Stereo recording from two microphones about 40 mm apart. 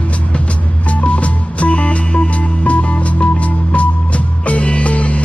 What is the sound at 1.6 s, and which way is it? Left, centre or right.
Music, left.